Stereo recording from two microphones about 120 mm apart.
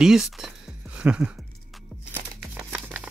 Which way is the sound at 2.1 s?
10° right (ahead or behind).